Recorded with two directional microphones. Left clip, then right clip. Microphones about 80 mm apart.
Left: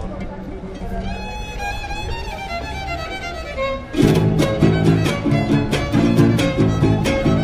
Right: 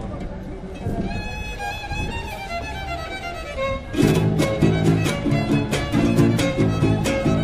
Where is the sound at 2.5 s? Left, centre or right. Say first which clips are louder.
Left 2 dB; centre.